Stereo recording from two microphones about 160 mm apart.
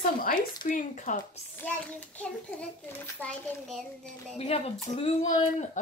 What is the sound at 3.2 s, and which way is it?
Babbling, 5° left (ahead or behind).